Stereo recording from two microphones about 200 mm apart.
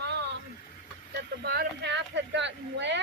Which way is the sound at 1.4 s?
55° right (ahead or behind).